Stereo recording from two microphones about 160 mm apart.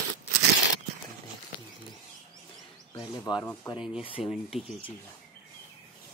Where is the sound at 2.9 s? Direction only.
20° left (ahead or behind).